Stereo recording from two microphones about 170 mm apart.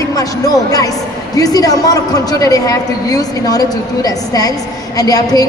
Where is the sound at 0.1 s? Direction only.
20° left (ahead or behind).